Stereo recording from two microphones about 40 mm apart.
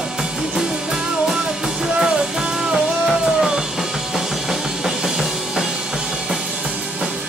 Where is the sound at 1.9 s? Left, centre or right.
Centre.